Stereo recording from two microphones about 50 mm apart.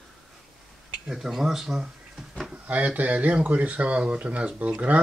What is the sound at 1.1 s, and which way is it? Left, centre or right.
Speech, centre.